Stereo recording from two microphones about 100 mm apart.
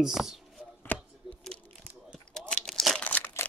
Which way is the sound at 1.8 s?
15° right (ahead or behind).